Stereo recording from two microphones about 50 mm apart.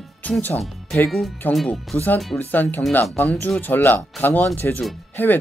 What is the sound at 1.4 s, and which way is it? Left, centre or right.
Speech, left.